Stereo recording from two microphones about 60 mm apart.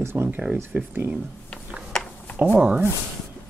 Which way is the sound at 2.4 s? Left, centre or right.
Right.